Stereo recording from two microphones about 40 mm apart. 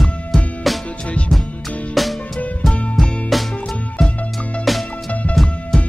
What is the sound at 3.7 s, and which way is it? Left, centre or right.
Music, left.